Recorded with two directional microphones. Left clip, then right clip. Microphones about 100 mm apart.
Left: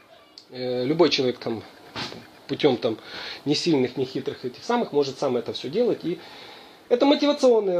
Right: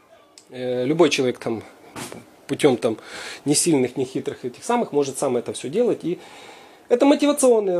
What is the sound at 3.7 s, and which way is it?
Speech, 50° right (ahead or behind).